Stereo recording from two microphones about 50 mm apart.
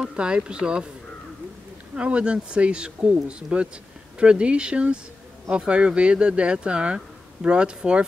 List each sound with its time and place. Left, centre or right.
0.0 s speech: centre
2.0 s speech: right